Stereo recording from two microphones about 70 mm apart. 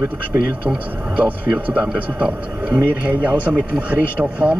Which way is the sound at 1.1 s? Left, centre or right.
Centre.